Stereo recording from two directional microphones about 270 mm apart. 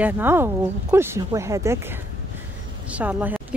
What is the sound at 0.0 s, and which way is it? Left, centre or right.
A woman's voice, centre.